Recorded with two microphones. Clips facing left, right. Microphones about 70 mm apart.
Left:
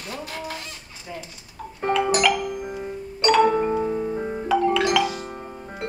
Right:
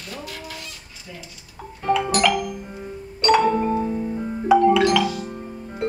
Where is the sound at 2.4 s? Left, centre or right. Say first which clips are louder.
Left 3 dB; left.